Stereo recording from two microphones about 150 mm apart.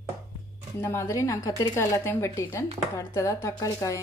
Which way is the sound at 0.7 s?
15° left (ahead or behind).